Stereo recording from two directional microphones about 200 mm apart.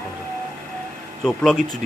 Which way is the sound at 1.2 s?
Centre (ahead or behind).